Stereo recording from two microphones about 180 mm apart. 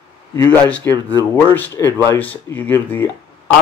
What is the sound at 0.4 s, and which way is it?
Speech, 10° left (ahead or behind).